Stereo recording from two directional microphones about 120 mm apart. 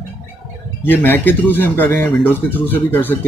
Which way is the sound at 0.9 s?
15° left (ahead or behind).